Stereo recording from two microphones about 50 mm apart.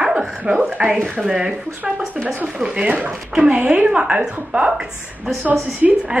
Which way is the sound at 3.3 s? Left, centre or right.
Centre.